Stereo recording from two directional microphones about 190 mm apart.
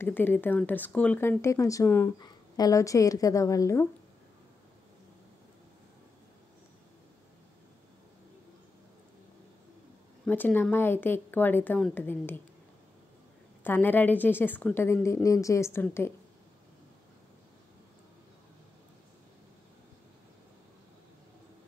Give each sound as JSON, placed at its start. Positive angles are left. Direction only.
{"t": 0.0, "sound": "a woman's voice", "side_deg": 10}
{"t": 10.2, "sound": "a woman's voice", "side_deg": 10}
{"t": 13.7, "sound": "a woman's voice", "side_deg": 10}